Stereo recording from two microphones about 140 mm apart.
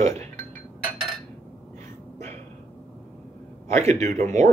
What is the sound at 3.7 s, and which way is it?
Speech, 55° right (ahead or behind).